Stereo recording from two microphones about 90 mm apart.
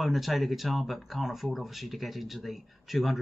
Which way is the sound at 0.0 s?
Centre (ahead or behind).